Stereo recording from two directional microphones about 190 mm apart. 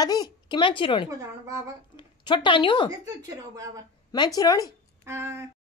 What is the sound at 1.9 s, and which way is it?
Speech, 25° left (ahead or behind).